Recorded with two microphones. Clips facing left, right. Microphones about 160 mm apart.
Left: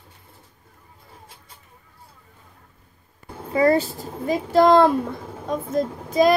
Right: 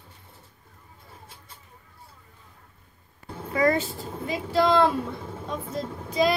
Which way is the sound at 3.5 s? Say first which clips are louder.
Left 5 dB; 30° left (ahead or behind).